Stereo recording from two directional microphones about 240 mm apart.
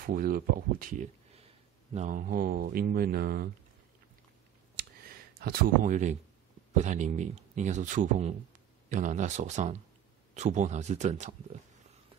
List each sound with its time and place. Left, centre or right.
0.0 s speech: right
5.0 s speech: right